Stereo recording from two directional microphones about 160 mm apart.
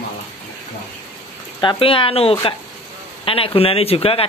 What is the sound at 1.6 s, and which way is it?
Speech, 30° left (ahead or behind).